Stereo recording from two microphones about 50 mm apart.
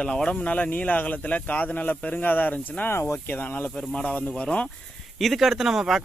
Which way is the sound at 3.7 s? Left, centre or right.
Centre.